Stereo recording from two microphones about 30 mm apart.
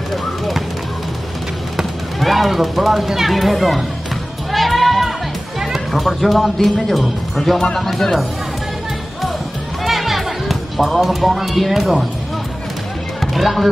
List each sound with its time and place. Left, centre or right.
2.1 s speech: centre
4.5 s music: centre
5.7 s speech: centre
9.8 s music: centre
11.0 s speech: centre
13.2 s speech: centre